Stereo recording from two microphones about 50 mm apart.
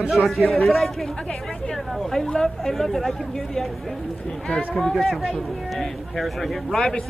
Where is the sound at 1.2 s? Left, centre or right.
Centre.